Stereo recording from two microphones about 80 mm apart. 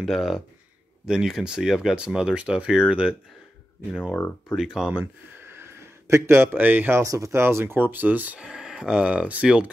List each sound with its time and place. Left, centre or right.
0.0 s speech: centre
4.6 s speech: centre
5.5 s a sound: right
7.0 s speech: right; by 8.5 s centre
8.5 s speech: centre